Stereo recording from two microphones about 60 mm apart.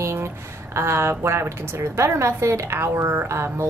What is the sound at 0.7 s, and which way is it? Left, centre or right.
Speech, right.